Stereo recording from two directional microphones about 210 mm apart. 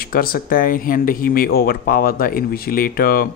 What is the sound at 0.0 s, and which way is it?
Speech, 45° left (ahead or behind).